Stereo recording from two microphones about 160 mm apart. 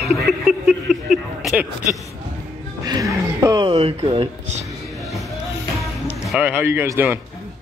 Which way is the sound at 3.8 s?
35° right (ahead or behind).